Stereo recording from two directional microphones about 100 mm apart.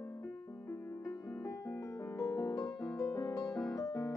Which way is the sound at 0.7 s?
30° left (ahead or behind).